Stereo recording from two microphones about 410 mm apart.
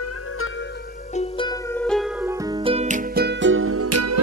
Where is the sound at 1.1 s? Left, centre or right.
Centre.